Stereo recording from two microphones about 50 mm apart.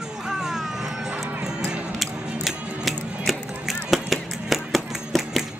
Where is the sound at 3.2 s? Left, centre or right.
Centre.